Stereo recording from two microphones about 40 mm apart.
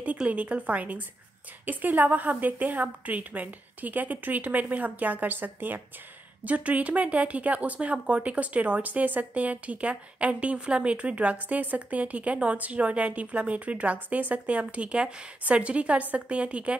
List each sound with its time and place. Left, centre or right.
0.3 s a woman's voice: right
6.4 s speech: right